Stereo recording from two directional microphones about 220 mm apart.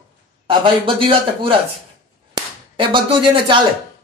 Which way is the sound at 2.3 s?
20° right (ahead or behind).